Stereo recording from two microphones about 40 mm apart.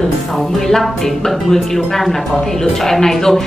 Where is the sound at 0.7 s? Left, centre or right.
Centre.